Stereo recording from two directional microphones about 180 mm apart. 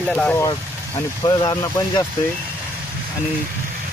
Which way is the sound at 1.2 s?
20° left (ahead or behind).